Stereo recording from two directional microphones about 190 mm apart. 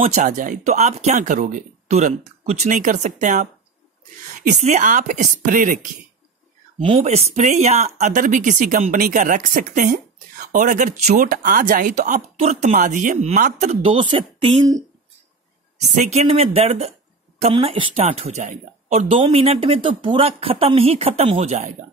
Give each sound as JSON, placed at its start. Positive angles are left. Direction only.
{"t": 0.0, "sound": "speech", "side_deg": -40}
{"t": 6.8, "sound": "speech", "side_deg": -35}
{"t": 16.0, "sound": "speech", "side_deg": -35}